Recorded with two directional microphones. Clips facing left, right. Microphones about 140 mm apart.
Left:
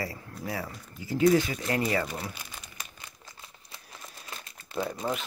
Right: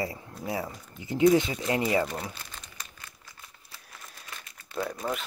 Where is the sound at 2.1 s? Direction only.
5° left (ahead or behind).